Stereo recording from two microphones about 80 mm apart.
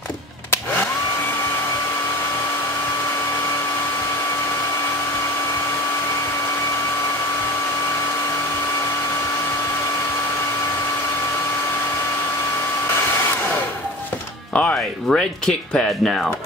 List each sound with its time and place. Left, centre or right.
14.5 s speech: centre